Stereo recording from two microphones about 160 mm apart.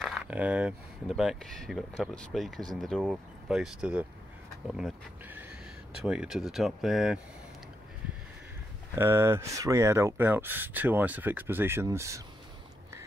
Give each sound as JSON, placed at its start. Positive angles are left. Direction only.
{"t": 0.0, "sound": "speech", "side_deg": -5}
{"t": 8.9, "sound": "speech", "side_deg": -15}